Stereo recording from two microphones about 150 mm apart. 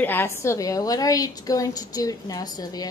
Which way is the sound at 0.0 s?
15° left (ahead or behind).